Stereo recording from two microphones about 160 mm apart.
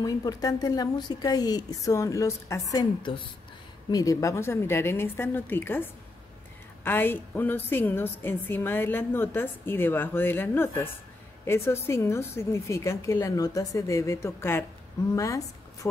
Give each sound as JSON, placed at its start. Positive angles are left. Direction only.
{"t": 0.0, "sound": "a woman's voice", "side_deg": 20}